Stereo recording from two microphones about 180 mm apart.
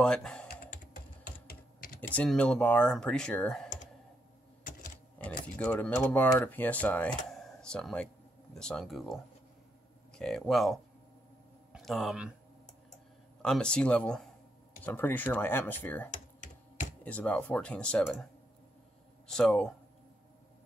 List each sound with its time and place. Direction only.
0.0 s speech: 5° left (ahead or behind)
1.2 s typing: 50° left (ahead or behind)
2.0 s speech: 10° left (ahead or behind)
5.6 s speech: 10° left (ahead or behind)
11.7 s a sound: centre (ahead or behind)
13.4 s speech: 5° left (ahead or behind)
19.2 s speech: 5° left (ahead or behind)